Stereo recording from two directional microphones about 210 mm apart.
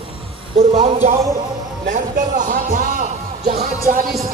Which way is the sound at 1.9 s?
35° right (ahead or behind).